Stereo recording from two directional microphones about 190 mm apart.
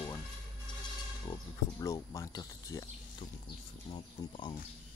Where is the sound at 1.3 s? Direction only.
15° left (ahead or behind).